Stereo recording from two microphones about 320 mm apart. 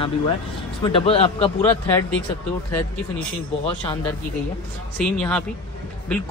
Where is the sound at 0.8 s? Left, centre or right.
Centre.